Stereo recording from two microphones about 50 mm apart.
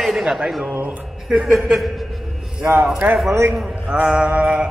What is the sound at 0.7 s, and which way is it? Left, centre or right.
Speech, right.